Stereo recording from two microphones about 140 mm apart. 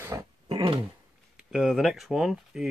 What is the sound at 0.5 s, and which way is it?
Speech, 40° right (ahead or behind).